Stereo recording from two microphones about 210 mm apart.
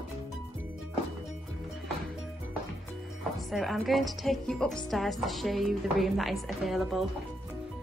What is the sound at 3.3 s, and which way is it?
A woman's voice, centre (ahead or behind).